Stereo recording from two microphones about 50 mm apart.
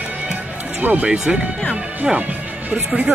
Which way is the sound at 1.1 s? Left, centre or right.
Centre.